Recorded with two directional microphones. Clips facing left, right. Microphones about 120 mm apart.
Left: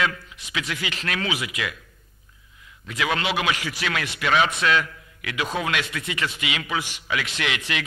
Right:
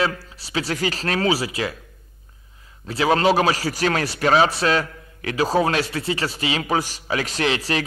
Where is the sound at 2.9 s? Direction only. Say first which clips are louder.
Right 8 dB; 35° right (ahead or behind).